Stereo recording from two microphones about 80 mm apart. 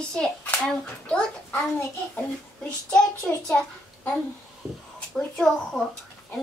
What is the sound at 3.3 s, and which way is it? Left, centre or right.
Speech, centre.